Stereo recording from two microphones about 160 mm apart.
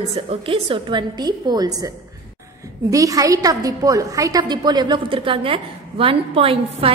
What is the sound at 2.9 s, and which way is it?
A woman's voice, 20° right (ahead or behind).